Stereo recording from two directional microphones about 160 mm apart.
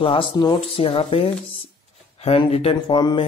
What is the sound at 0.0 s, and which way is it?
Speech, 35° left (ahead or behind).